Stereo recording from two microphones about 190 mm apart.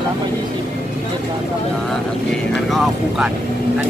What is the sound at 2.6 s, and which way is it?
Speech, centre (ahead or behind).